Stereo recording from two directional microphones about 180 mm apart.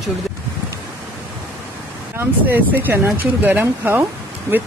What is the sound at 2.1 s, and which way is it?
Speech, 10° right (ahead or behind).